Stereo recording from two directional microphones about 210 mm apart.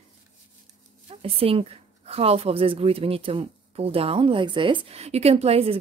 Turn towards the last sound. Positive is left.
turn(degrees=-30)  # may be behind; listen again after turning